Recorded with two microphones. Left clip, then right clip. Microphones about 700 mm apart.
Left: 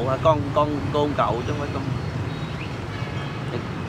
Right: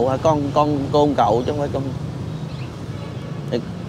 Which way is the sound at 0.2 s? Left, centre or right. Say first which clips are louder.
Right 2 dB; right.